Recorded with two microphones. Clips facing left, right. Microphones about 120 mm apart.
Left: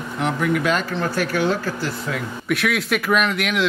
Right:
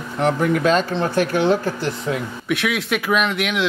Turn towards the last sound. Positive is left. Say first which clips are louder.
# even
turn(degrees=0)  # may be behind; listen again after turning